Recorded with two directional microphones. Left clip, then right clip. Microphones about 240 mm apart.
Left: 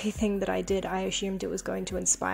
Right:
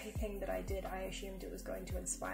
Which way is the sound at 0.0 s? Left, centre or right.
Left.